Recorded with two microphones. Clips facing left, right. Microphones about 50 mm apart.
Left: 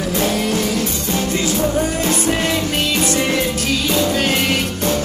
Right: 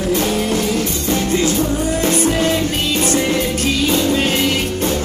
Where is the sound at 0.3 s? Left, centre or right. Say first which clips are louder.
Right 1 dB; right.